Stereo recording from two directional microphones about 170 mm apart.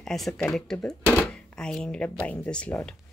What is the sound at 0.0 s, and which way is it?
Speech, centre (ahead or behind).